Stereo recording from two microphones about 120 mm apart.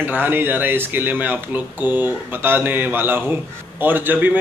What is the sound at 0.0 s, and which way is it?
A man's voice, 15° right (ahead or behind).